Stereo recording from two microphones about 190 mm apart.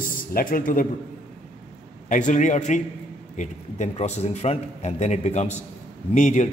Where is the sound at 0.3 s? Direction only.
50° left (ahead or behind).